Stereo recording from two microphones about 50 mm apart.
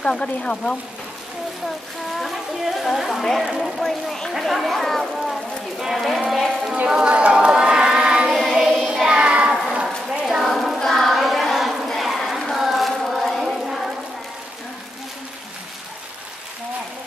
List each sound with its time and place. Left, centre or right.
0.0 s speech: centre
2.1 s speech: centre
6.9 s choir: right
8.5 s child singing: centre
9.8 s a sound: centre
10.4 s child singing: centre
10.8 s a sound: centre